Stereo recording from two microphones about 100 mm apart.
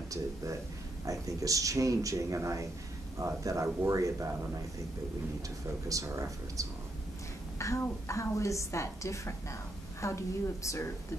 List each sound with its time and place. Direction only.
1.0 s speech: 35° right (ahead or behind)
5.9 s speech: 35° right (ahead or behind)
7.5 s a sound: 30° left (ahead or behind)
7.8 s a woman's voice: 30° left (ahead or behind)